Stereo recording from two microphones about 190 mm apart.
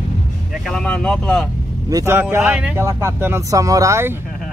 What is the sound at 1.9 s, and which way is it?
Speech, 15° right (ahead or behind).